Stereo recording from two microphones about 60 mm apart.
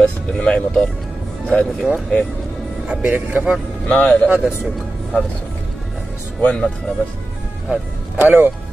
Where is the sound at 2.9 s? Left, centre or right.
Centre.